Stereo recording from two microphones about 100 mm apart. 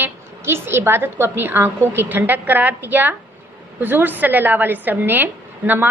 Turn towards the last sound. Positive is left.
turn(degrees=-20)  # may be behind; listen again after turning